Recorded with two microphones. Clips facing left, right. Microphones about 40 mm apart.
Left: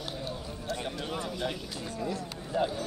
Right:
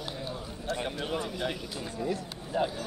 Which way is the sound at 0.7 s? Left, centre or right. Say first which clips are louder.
Right 2 dB; right.